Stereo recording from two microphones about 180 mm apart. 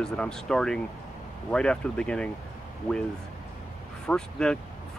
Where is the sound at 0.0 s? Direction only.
5° left (ahead or behind).